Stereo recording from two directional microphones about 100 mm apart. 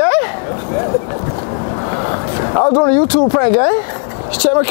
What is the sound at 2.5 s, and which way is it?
Speech, 30° left (ahead or behind).